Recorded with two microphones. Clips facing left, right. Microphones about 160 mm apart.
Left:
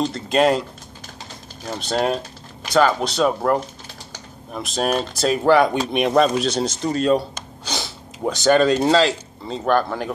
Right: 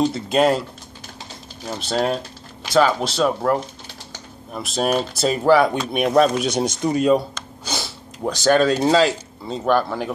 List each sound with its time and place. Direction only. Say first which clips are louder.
0.0 s speech: right 1 dB; 5° right (ahead or behind)
7.7 s snort: even; 15° left (ahead or behind)
8.3 s speech: left 1 dB; centre (ahead or behind)